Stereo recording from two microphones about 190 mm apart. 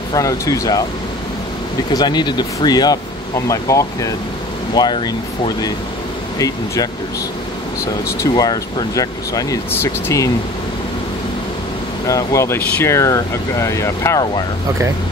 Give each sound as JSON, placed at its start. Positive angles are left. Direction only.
{"t": 0.1, "sound": "speech", "side_deg": 20}
{"t": 1.9, "sound": "speech", "side_deg": 20}
{"t": 12.1, "sound": "speech", "side_deg": 15}